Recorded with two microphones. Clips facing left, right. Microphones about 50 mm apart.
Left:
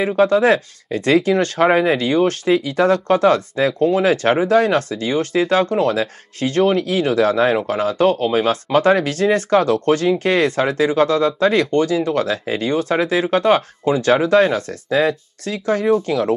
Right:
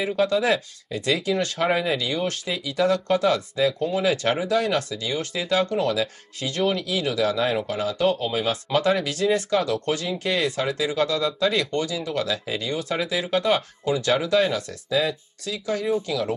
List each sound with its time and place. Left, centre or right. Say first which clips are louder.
0.0 s speech: left 7 dB; left